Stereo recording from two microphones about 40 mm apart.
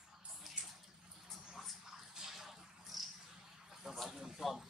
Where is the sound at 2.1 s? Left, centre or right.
Centre.